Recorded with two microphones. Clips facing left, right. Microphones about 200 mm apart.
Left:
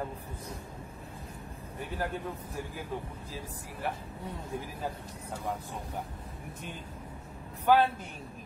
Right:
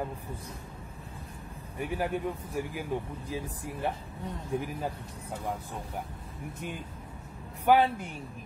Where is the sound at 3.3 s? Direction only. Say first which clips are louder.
Right 6 dB; 20° right (ahead or behind).